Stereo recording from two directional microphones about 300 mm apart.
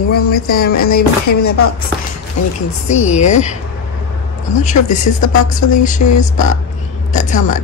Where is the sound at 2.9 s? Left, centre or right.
Left.